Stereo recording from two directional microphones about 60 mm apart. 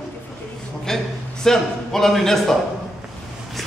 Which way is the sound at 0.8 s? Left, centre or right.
Centre.